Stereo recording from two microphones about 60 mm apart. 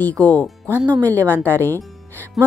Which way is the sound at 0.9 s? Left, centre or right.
Right.